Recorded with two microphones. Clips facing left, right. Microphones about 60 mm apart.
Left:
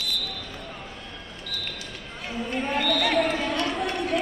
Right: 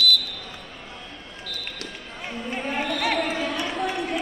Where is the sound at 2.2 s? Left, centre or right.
Centre.